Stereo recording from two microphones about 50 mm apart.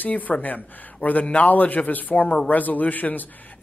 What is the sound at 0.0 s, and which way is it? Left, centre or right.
A man's voice, left.